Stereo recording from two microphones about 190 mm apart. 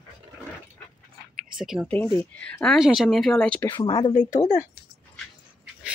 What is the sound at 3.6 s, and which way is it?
Speech, 25° left (ahead or behind).